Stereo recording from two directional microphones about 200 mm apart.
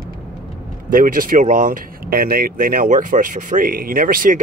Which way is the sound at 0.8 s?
45° right (ahead or behind).